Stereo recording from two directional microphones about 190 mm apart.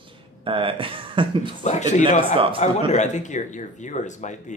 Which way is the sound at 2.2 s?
25° right (ahead or behind).